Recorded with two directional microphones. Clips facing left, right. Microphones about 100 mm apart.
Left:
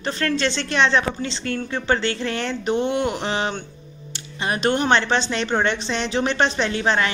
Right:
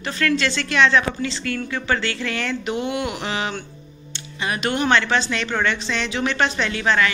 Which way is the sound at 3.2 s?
35° left (ahead or behind).